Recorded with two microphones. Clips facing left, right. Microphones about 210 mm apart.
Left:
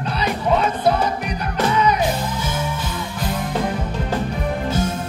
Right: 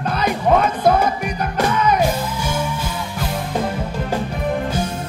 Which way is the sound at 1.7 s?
50° right (ahead or behind).